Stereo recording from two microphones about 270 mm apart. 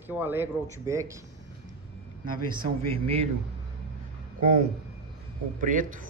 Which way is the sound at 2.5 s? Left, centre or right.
Centre.